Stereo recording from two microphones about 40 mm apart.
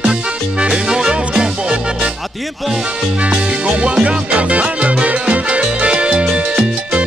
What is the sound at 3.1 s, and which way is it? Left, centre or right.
Music, right.